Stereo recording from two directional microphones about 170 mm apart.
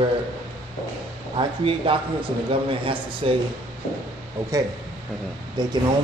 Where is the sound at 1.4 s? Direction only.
30° right (ahead or behind).